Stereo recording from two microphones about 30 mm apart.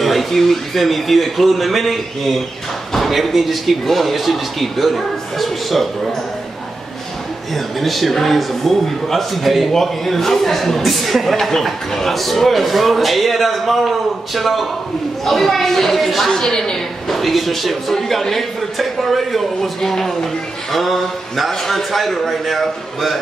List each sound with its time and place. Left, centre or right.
0.0 s speech: centre
7.5 s speech: centre
9.7 s speech: centre
11.3 s speech: centre
16.5 s a woman's voice: centre
17.1 s speech: centre
20.7 s speech: centre